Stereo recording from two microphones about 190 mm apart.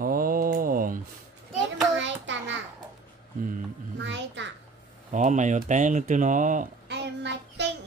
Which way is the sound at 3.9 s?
70° right (ahead or behind).